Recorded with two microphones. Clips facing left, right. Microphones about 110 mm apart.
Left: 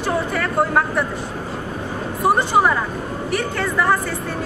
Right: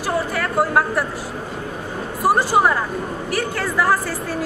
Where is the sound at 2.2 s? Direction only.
5° right (ahead or behind).